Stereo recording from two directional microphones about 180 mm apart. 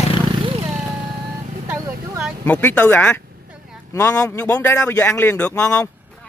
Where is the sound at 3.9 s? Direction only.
20° left (ahead or behind).